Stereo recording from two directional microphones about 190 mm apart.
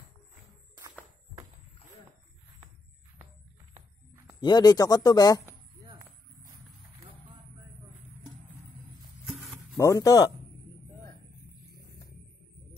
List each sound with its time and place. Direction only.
4.4 s speech: 20° left (ahead or behind)
9.2 s a sound: centre (ahead or behind)
9.8 s speech: 20° left (ahead or behind)